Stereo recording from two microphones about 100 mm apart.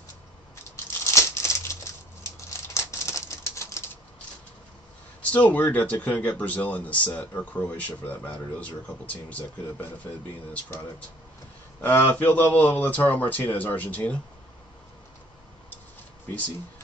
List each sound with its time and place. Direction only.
1.0 s crumpling: 30° left (ahead or behind)
2.7 s patter: 30° left (ahead or behind)
5.2 s speech: 15° left (ahead or behind)
11.8 s speech: 20° left (ahead or behind)